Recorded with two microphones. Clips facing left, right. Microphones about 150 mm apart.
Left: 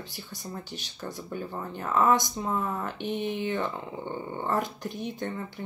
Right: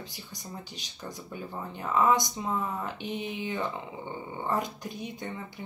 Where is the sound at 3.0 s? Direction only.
50° left (ahead or behind).